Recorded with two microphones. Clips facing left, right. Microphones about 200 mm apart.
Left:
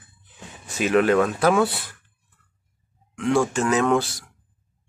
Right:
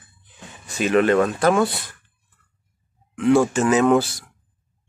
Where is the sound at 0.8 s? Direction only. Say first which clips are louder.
Right 1 dB; 5° left (ahead or behind).